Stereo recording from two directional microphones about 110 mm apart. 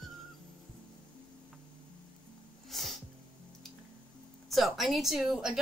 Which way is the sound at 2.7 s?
Centre (ahead or behind).